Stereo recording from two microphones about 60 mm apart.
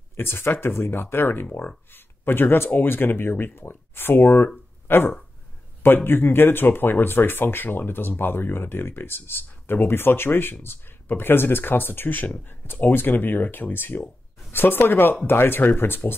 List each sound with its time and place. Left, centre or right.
0.1 s speech: left